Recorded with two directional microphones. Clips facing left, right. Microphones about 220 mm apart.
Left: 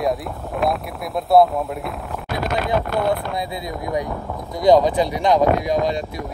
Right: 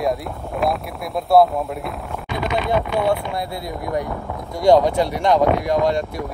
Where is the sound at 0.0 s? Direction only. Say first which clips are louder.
Even; centre (ahead or behind).